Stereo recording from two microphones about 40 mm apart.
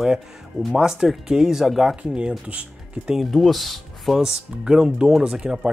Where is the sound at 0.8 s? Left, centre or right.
Centre.